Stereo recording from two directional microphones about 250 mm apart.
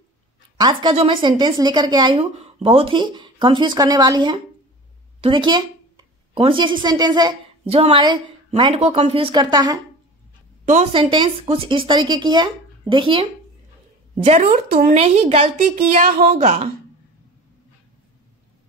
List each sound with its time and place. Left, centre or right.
0.6 s a woman's voice: centre
10.6 s a woman's voice: right